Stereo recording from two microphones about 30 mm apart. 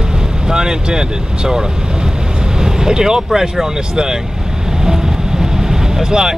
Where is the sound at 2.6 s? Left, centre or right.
Centre.